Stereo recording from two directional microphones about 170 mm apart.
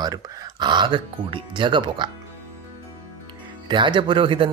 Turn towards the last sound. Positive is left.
turn(degrees=-30)  # may be behind; listen again after turning